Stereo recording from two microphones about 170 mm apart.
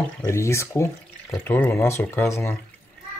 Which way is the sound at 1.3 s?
10° left (ahead or behind).